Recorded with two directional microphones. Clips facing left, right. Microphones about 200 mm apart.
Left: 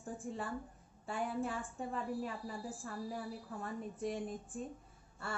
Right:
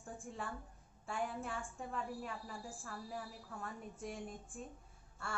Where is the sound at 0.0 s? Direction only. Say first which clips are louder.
Left 4 dB; centre (ahead or behind).